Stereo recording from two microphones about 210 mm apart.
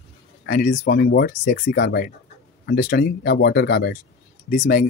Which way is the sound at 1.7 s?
50° left (ahead or behind).